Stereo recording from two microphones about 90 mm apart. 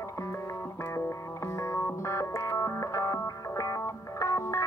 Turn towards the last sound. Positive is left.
turn(degrees=35)  # may be behind; listen again after turning